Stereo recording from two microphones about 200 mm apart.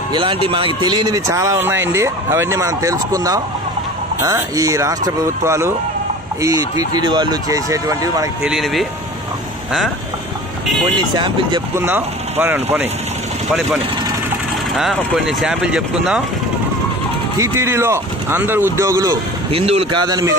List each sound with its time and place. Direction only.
0.1 s speech: 25° right (ahead or behind)
6.9 s speech: 20° right (ahead or behind)
8.5 s speech: centre (ahead or behind)
11.1 s speech: 25° right (ahead or behind)
11.7 s speech: 10° right (ahead or behind)
14.8 s speech: centre (ahead or behind)
17.4 s speech: 15° right (ahead or behind)
19.5 s speech: 30° right (ahead or behind)